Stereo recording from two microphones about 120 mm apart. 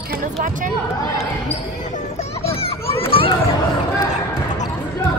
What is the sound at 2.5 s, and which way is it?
Children playing, 50° left (ahead or behind).